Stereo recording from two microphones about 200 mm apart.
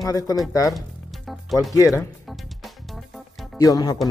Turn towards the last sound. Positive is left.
turn(degrees=20)  # may be behind; listen again after turning